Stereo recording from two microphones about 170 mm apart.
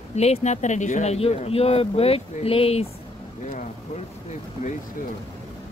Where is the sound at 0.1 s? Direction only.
40° left (ahead or behind).